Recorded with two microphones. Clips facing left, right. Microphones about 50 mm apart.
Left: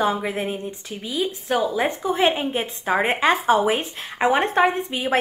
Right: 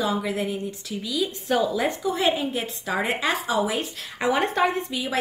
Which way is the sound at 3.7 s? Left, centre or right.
Left.